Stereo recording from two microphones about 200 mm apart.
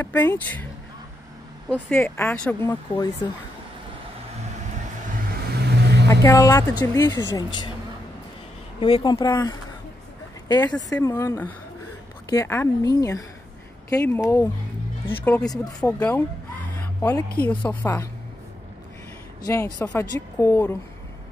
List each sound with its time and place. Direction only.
0.0 s a woman's voice: 10° left (ahead or behind)
1.7 s a woman's voice: 10° left (ahead or behind)
5.7 s vehicle: 55° right (ahead or behind)
6.0 s a woman's voice: 15° left (ahead or behind)
8.7 s speech: 25° left (ahead or behind)
10.9 s a woman's voice: 15° left (ahead or behind)
16.7 s a sound: 10° left (ahead or behind)
17.5 s a woman's voice: 5° left (ahead or behind)
19.4 s a woman's voice: 15° left (ahead or behind)